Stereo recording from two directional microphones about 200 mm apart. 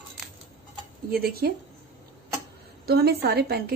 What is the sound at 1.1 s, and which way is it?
Speech, 50° right (ahead or behind).